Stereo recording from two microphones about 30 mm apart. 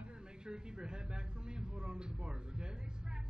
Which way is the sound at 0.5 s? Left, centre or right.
Right.